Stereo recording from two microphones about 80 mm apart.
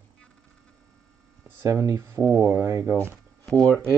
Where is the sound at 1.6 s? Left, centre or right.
Right.